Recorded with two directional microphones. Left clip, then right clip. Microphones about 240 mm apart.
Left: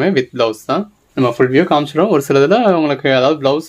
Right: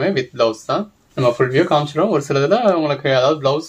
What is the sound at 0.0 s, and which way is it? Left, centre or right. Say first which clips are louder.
Speech: left 2 dB; left.